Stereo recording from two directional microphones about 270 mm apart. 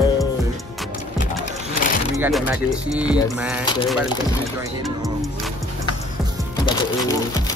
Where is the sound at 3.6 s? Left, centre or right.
Centre.